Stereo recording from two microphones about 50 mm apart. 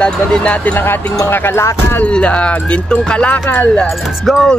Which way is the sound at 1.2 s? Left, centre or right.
Left.